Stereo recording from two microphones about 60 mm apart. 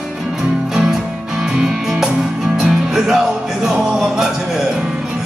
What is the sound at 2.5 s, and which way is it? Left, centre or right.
Music, centre.